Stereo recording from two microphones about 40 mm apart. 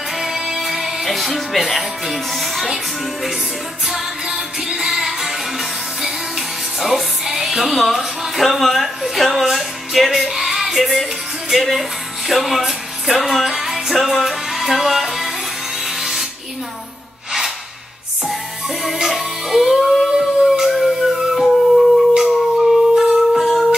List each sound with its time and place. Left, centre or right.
0.2 s music: centre
3.8 s music: centre
10.8 s music: centre
15.8 s a sound: centre
19.0 s music: centre